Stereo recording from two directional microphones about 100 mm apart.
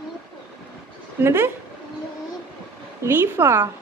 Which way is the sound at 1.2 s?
25° right (ahead or behind).